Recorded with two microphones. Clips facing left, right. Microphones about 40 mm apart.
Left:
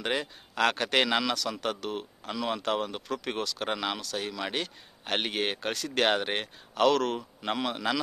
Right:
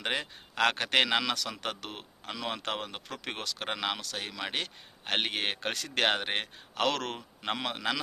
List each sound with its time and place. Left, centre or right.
0.0 s a man's voice: right
5.9 s a man's voice: right
6.7 s a man's voice: right
7.2 s a man's voice: centre